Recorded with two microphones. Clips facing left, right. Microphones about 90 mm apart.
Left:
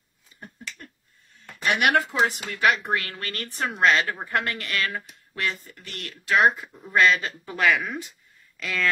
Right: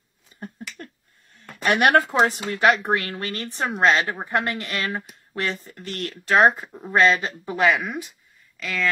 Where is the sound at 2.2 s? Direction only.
35° right (ahead or behind); by 8.1 s 15° right (ahead or behind).